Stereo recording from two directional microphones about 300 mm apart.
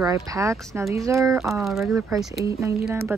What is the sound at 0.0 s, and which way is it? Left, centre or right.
Speech, centre.